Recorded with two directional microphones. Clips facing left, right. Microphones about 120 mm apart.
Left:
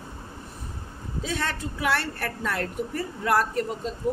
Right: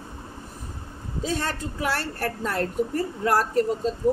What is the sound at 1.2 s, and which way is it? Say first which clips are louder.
A woman's voice: right 2 dB; 40° right (ahead or behind).